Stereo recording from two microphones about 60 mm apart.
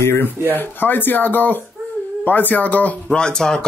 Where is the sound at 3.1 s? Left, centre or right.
Centre.